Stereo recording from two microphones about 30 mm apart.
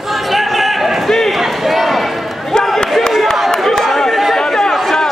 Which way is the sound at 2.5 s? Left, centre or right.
Left.